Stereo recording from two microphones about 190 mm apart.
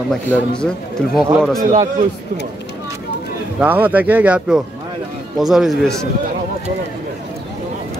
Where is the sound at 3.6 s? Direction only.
10° right (ahead or behind).